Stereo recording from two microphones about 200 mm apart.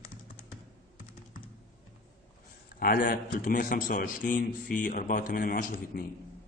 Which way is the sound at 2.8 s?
45° left (ahead or behind).